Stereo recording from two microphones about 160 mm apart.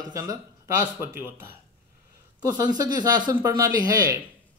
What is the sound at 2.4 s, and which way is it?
Speech, 25° right (ahead or behind).